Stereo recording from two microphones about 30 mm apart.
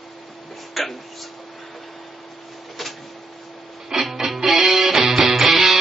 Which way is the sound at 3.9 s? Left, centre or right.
Right.